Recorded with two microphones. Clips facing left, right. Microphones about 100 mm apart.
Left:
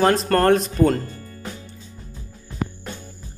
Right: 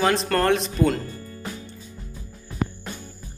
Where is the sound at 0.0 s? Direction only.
45° left (ahead or behind).